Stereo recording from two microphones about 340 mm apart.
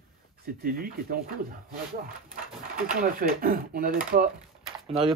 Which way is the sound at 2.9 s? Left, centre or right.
Right.